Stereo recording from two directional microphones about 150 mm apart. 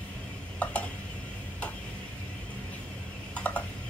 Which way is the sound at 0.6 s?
10° left (ahead or behind).